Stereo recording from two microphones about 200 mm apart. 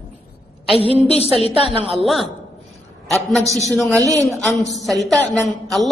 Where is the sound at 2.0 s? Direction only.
Centre (ahead or behind).